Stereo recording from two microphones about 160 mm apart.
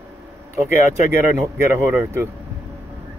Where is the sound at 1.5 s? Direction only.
15° right (ahead or behind).